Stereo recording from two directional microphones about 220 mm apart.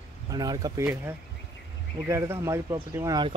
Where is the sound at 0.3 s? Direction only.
15° right (ahead or behind).